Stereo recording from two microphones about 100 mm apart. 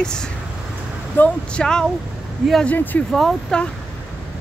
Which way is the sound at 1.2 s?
10° left (ahead or behind).